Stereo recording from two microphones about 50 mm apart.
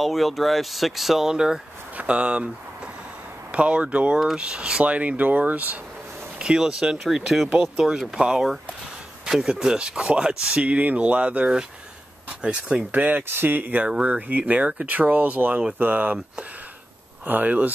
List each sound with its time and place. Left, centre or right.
0.0 s speech: centre; by 2.5 s right
3.5 s speech: right
6.4 s speech: centre
12.9 s speech: right
17.3 s speech: right